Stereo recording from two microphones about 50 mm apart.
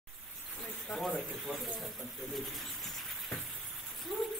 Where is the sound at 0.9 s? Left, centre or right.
Centre.